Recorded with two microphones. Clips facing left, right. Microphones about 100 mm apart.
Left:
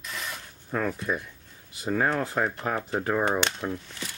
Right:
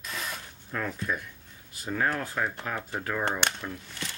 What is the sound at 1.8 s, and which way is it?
Speech, 25° left (ahead or behind).